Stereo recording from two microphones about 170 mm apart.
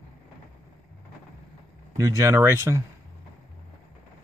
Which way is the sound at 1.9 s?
20° right (ahead or behind).